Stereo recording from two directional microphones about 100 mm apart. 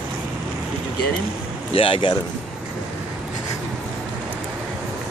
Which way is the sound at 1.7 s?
65° left (ahead or behind).